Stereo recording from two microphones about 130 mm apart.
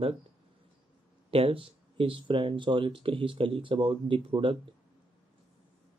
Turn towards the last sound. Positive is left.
turn(degrees=-40)  # may be behind; listen again after turning